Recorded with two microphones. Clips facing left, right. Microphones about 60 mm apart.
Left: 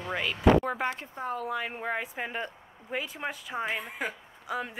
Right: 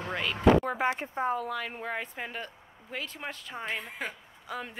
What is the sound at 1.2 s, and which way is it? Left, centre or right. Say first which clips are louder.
Speech: right 7 dB; right.